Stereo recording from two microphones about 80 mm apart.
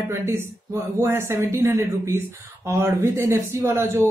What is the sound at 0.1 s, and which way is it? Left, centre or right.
A man's voice, right.